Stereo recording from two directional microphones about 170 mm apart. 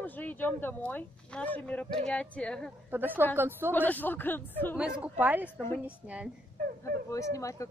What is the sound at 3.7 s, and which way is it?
Speech, 10° left (ahead or behind).